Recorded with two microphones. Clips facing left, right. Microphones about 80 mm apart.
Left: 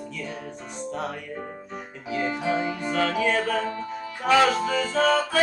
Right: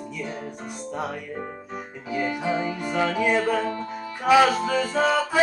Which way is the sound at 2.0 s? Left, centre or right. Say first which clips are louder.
Even; centre.